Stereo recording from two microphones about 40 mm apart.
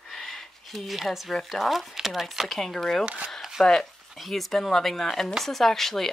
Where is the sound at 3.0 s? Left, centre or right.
Right.